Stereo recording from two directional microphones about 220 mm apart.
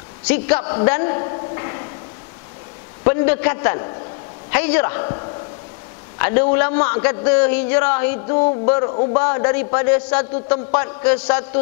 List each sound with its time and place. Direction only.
0.3 s a man's voice: 10° left (ahead or behind)
0.8 s a sound: 15° left (ahead or behind)
3.0 s a man's voice: 15° left (ahead or behind)
6.1 s a man's voice: 15° left (ahead or behind)